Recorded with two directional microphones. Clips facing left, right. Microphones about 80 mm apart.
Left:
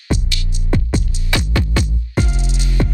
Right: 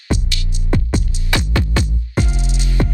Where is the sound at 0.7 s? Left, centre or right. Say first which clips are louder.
Even; right.